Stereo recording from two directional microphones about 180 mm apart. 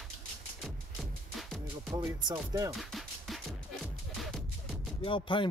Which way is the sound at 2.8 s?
Centre (ahead or behind).